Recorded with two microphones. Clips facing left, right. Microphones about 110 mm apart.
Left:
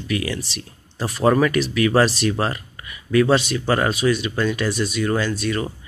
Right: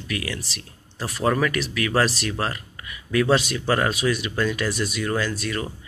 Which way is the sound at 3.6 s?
10° left (ahead or behind).